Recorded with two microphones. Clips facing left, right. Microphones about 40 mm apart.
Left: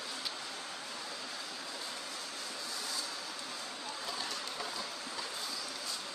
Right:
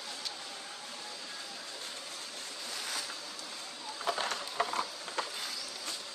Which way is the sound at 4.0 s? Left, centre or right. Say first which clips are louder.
Right 8 dB; right.